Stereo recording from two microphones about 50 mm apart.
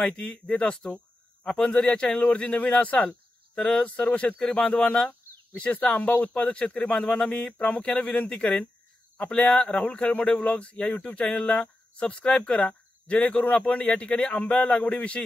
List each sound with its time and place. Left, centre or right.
0.0 s speech: left